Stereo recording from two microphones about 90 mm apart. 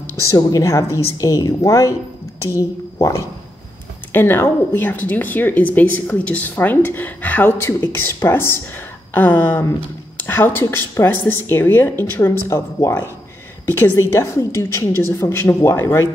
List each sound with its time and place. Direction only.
0.4 s a woman's voice: 40° left (ahead or behind)